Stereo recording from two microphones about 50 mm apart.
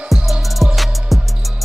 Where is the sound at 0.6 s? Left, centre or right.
Right.